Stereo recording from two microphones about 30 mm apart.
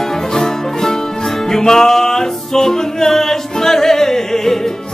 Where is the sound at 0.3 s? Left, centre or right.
Centre.